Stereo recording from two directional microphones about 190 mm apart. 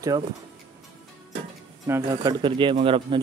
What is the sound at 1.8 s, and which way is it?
Speech, 20° right (ahead or behind).